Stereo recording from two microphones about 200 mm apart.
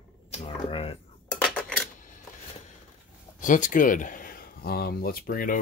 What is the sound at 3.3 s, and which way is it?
Speech, 40° left (ahead or behind).